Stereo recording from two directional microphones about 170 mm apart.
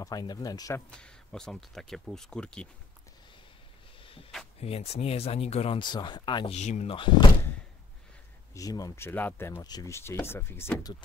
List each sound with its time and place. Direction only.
0.0 s speech: 20° left (ahead or behind)
0.8 s speech: 5° left (ahead or behind)
4.0 s a sound: 35° left (ahead or behind)
4.6 s speech: 40° left (ahead or behind)
6.5 s speech: 40° left (ahead or behind)
8.5 s speech: 20° left (ahead or behind)